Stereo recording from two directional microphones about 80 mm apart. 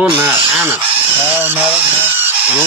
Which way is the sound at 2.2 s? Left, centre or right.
Right.